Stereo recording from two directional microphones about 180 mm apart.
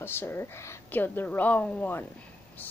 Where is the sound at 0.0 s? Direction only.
10° left (ahead or behind).